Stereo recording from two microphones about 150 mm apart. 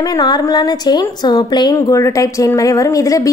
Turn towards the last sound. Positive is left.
turn(degrees=20)  # may be behind; listen again after turning